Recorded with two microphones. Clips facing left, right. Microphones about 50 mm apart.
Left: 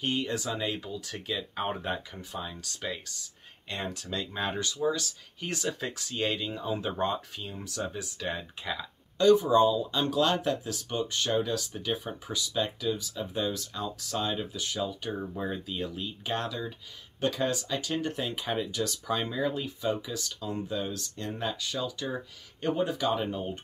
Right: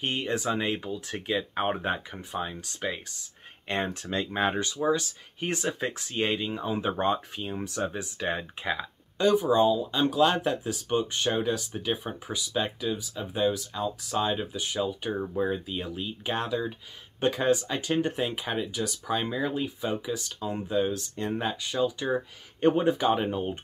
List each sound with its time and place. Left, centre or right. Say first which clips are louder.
0.0 s speech: right 2 dB; right
3.6 s speech: right 6 dB; right
18.3 s speech: right 1 dB; centre